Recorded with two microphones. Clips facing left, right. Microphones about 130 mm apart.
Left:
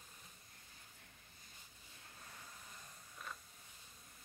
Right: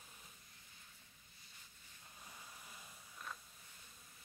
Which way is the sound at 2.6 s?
5° right (ahead or behind).